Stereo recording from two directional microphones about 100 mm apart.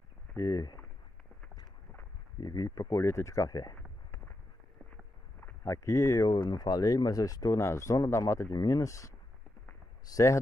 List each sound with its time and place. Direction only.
0.4 s speech: 40° left (ahead or behind)
2.4 s speech: 40° left (ahead or behind)
3.7 s a sound: 15° left (ahead or behind)
5.4 s speech: 30° left (ahead or behind)
6.2 s speech: 45° left (ahead or behind)